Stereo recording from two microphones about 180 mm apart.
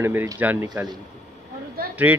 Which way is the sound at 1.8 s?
55° right (ahead or behind).